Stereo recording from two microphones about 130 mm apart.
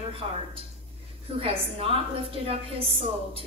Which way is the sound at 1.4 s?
45° right (ahead or behind).